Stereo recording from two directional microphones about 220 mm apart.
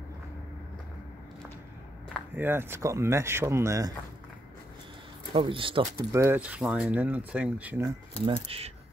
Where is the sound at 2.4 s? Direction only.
10° right (ahead or behind).